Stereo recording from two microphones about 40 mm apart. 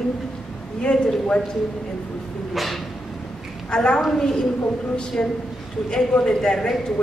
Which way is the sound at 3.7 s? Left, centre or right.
Left.